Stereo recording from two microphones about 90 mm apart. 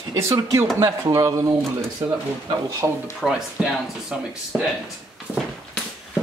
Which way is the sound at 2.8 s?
25° right (ahead or behind).